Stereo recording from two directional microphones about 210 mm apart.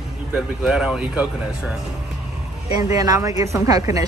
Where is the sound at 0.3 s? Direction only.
Centre (ahead or behind).